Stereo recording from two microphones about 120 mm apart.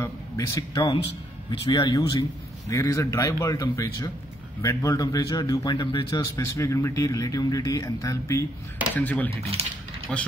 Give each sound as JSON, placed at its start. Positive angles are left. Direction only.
{"t": 0.0, "sound": "a man's voice", "side_deg": 30}
{"t": 8.9, "sound": "speech", "side_deg": 15}
{"t": 9.3, "sound": "speech", "side_deg": -55}
{"t": 10.1, "sound": "speech", "side_deg": 5}